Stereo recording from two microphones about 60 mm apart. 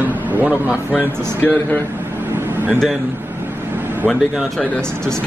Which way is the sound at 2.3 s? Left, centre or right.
Right.